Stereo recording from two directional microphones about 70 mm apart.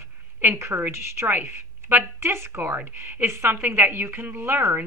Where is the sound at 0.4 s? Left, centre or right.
Right.